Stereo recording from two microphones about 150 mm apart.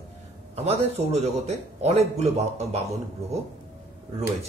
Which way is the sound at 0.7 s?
45° right (ahead or behind).